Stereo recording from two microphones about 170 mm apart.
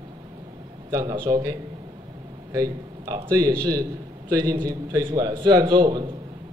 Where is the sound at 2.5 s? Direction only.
20° right (ahead or behind).